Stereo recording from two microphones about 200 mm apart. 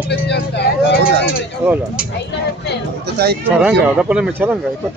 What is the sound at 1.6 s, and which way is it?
Speech, 10° right (ahead or behind).